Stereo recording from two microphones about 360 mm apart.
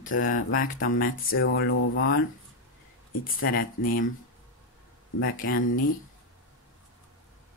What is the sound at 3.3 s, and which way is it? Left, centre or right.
Speech, left.